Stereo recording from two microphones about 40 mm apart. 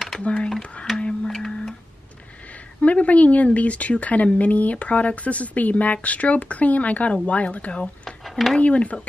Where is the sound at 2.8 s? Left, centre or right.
Left.